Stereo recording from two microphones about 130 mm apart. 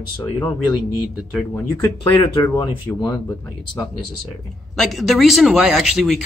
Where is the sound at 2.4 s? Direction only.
20° left (ahead or behind).